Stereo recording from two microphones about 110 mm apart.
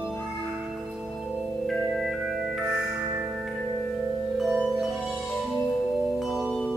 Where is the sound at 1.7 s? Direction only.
Centre (ahead or behind).